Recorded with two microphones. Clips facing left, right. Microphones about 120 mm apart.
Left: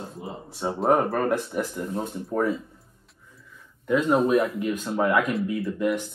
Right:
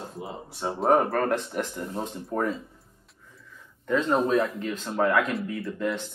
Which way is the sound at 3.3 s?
10° left (ahead or behind).